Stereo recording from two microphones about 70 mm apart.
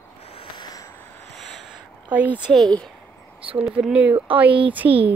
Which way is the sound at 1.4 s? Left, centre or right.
Centre.